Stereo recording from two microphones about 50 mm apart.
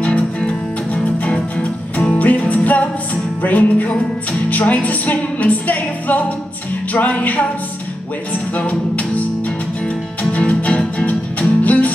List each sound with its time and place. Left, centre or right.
0.0 s music: centre
8.5 s music: left
10.5 s music: centre